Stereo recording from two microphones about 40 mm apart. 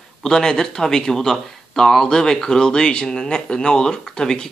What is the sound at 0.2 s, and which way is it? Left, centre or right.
Speech, centre.